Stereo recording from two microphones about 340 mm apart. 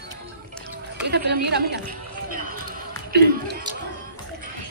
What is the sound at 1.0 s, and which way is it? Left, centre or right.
Chatter, right.